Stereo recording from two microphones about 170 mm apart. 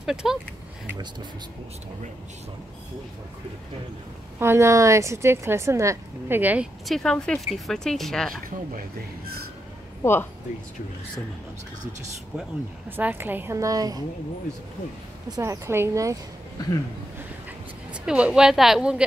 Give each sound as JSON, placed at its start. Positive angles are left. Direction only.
{"t": 0.0, "sound": "a woman's voice", "side_deg": -5}
{"t": 4.4, "sound": "a woman's voice", "side_deg": -15}
{"t": 8.5, "sound": "speech", "side_deg": -55}
{"t": 12.9, "sound": "a woman's voice", "side_deg": -10}
{"t": 15.2, "sound": "speech", "side_deg": -20}
{"t": 18.0, "sound": "a woman's voice", "side_deg": -5}